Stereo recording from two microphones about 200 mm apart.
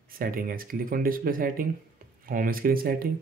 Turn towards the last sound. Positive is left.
turn(degrees=-45)  # may be behind; listen again after turning